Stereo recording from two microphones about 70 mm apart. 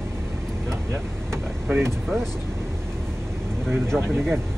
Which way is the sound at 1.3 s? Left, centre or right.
Right.